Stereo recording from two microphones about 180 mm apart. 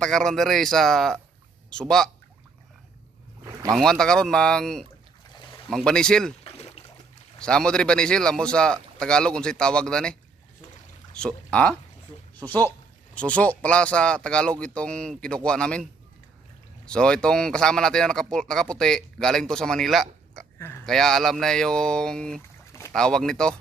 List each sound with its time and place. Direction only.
0.0 s speech: 5° left (ahead or behind)
3.7 s speech: 5° left (ahead or behind)
6.4 s a sound: 35° left (ahead or behind)
7.3 s speech: 5° left (ahead or behind)
11.1 s speech: 5° left (ahead or behind)
20.5 s a sound: 15° left (ahead or behind)
20.8 s speech: centre (ahead or behind)
22.7 s boat: 15° left (ahead or behind)
22.9 s speech: 5° left (ahead or behind)